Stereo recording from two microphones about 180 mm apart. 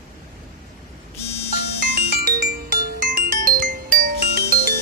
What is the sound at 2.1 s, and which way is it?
Music, 55° right (ahead or behind).